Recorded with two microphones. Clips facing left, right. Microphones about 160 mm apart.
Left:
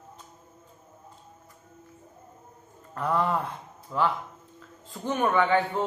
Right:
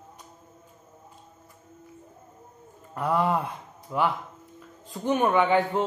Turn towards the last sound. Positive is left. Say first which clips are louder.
# right 2 dB
turn(degrees=-15)  # may be behind; listen again after turning